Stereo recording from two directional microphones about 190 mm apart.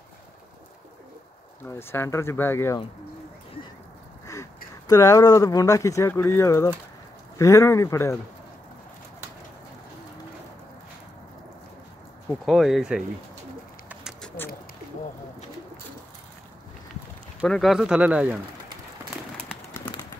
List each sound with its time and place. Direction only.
1.6 s speech: 10° left (ahead or behind)
4.8 s speech: 15° left (ahead or behind)
12.3 s speech: centre (ahead or behind)
13.8 s bird: 5° right (ahead or behind)
17.5 s speech: centre (ahead or behind)